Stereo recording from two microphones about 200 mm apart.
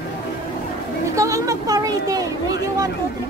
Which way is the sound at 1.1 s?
15° right (ahead or behind).